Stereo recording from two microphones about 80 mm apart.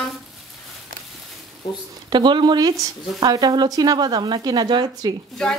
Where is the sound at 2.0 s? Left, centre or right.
Right.